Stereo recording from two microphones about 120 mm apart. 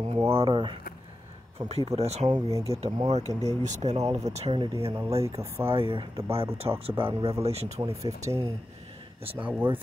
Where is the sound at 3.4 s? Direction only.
80° right; by 4.6 s 60° right (ahead or behind).